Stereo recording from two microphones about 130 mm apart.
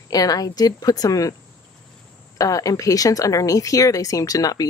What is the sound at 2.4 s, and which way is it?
Speech, 25° left (ahead or behind).